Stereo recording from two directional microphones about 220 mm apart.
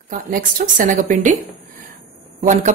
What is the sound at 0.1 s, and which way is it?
Speech, 35° right (ahead or behind).